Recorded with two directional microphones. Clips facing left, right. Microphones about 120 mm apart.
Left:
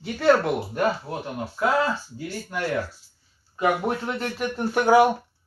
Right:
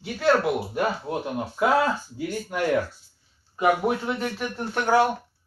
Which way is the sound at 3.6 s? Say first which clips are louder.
Right 1 dB; 5° right (ahead or behind).